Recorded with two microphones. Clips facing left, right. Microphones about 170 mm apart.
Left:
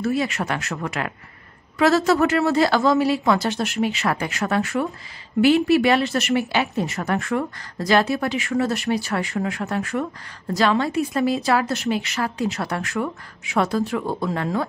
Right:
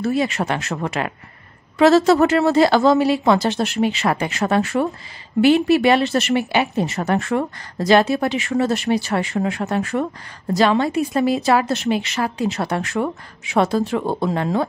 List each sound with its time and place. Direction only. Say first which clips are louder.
0.0 s a woman's voice: right 3 dB; 25° right (ahead or behind)